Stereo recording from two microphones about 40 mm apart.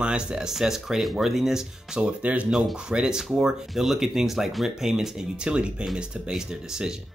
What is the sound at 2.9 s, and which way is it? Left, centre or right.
Speech, centre.